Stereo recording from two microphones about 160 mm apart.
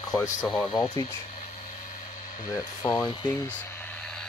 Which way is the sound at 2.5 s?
20° left (ahead or behind).